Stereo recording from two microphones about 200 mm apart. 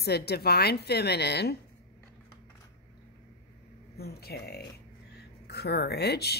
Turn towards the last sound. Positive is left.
turn(degrees=55)  # may be behind; listen again after turning